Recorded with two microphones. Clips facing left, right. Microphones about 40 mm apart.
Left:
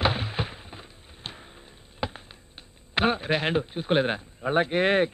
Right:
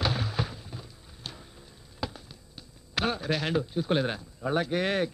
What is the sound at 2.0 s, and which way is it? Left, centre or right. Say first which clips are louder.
Basketball bounce: left 4 dB; left.